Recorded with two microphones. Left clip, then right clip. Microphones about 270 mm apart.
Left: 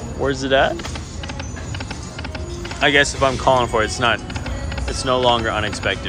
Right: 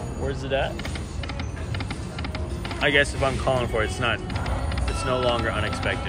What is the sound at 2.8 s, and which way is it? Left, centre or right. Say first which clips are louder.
Speech: left 6 dB; centre.